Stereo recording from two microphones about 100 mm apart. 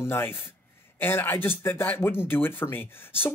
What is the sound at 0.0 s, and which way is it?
Speech, 25° left (ahead or behind).